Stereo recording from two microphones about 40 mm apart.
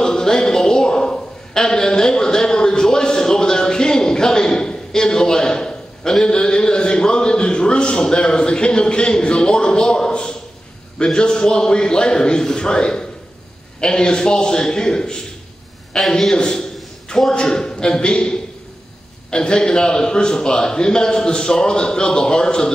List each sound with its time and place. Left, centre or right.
0.0 s a sound: centre
6.2 s a man's voice: left
16.3 s a man's voice: centre